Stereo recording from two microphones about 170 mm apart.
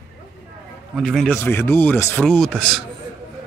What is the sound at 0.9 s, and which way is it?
Speech, centre (ahead or behind).